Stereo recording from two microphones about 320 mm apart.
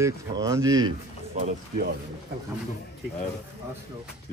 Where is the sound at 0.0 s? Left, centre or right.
Centre.